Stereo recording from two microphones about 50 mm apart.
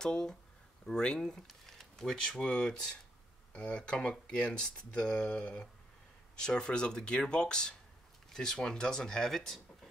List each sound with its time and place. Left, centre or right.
0.0 s speech: centre